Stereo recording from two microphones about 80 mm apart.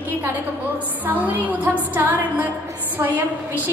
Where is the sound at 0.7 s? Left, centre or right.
Right.